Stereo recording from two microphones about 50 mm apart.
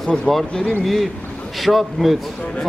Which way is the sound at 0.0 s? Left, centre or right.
Centre.